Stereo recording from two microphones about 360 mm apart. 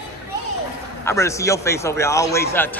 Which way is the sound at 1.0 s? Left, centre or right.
Centre.